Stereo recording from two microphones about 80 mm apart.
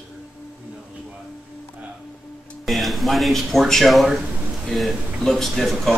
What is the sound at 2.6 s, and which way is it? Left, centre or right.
Speech, centre.